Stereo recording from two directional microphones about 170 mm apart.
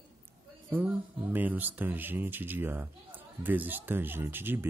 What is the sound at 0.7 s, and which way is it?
Speech, 10° right (ahead or behind).